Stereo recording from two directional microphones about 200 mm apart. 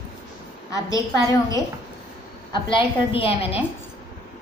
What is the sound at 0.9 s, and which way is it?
A woman's voice, 15° left (ahead or behind).